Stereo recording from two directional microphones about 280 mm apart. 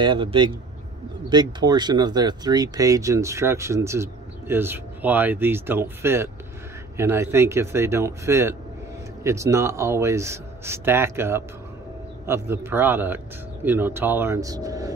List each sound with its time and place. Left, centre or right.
0.0 s speech: centre